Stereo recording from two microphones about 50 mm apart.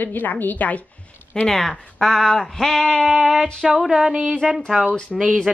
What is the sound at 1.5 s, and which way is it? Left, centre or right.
Speech, centre.